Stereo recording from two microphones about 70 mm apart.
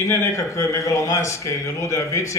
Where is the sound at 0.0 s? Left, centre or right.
Left.